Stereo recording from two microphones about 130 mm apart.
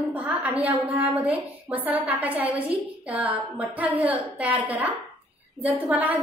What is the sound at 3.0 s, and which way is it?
A child's voice, 10° right (ahead or behind).